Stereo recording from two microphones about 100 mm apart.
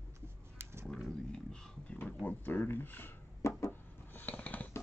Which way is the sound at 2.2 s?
20° left (ahead or behind).